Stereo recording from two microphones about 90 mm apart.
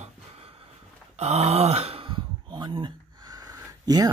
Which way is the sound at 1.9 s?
65° right (ahead or behind).